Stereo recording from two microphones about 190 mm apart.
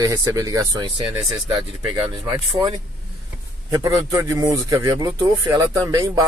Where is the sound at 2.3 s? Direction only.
20° right (ahead or behind).